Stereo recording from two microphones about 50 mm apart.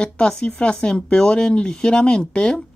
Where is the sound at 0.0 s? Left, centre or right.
Centre.